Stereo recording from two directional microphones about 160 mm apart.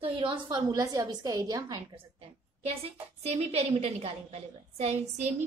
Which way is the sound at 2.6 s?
40° right (ahead or behind).